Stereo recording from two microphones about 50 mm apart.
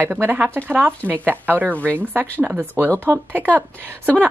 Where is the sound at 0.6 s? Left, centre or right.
Right.